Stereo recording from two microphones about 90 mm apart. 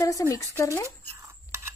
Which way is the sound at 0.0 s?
35° left (ahead or behind).